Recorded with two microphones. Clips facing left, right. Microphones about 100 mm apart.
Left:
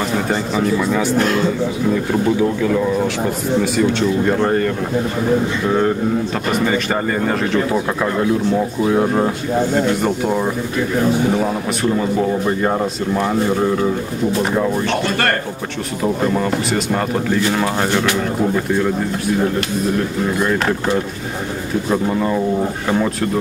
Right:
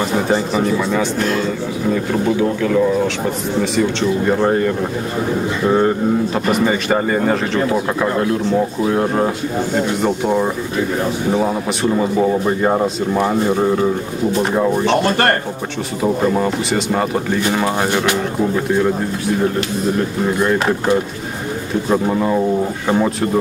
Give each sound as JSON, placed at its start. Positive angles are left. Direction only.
{"t": 0.3, "sound": "speech", "side_deg": -5}
{"t": 4.3, "sound": "speech", "side_deg": -5}
{"t": 11.8, "sound": "speech", "side_deg": -5}
{"t": 15.0, "sound": "a man's voice", "side_deg": -30}
{"t": 16.0, "sound": "speech", "side_deg": -5}
{"t": 20.4, "sound": "speech", "side_deg": -5}
{"t": 21.9, "sound": "speech", "side_deg": -10}